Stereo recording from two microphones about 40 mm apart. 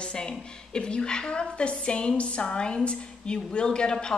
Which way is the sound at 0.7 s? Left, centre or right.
Left.